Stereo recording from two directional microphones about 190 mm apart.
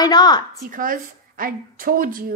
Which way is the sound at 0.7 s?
45° right (ahead or behind).